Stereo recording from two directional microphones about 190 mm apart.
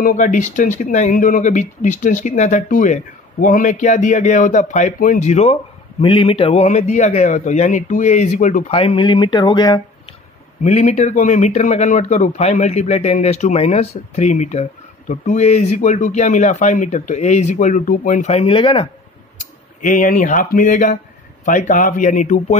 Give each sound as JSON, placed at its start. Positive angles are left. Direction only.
{"t": 0.0, "sound": "speech", "side_deg": 45}
{"t": 10.6, "sound": "speech", "side_deg": 40}
{"t": 19.8, "sound": "speech", "side_deg": 45}